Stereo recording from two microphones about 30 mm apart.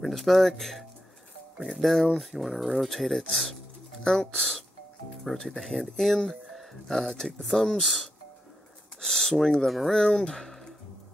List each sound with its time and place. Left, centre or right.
0.1 s speech: centre
4.0 s speech: centre
4.4 s speech: centre
9.0 s speech: centre
9.9 s speech: left